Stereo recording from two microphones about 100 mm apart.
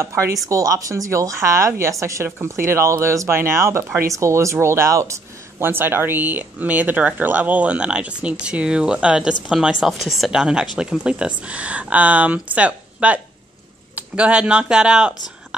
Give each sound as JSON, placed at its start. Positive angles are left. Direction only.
{"t": 0.0, "sound": "a woman's voice", "side_deg": -30}